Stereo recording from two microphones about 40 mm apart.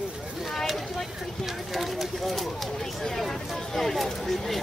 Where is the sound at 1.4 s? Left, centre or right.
Centre.